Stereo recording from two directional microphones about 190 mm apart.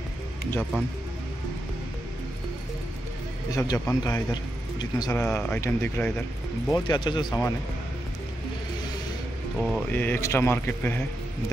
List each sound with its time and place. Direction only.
3.4 s a man's voice: 15° left (ahead or behind)
5.2 s speech: 5° left (ahead or behind)
6.7 s a man's voice: 20° left (ahead or behind)
9.6 s speech: 5° right (ahead or behind)
9.9 s speech: 10° left (ahead or behind)